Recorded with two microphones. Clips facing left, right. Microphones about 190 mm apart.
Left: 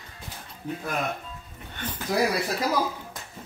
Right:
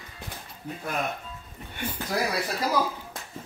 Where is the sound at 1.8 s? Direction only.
10° right (ahead or behind).